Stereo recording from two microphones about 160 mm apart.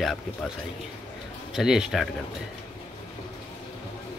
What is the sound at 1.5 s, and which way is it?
Speech, 5° right (ahead or behind).